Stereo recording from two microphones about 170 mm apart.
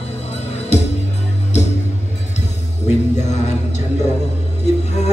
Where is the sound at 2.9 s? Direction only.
40° left (ahead or behind).